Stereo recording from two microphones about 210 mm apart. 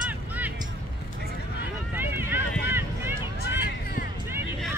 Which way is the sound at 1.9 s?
10° right (ahead or behind).